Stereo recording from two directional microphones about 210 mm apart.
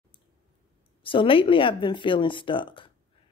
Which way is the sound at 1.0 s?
25° left (ahead or behind).